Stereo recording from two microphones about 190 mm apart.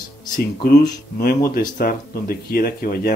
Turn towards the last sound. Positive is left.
turn(degrees=50)  # may be behind; listen again after turning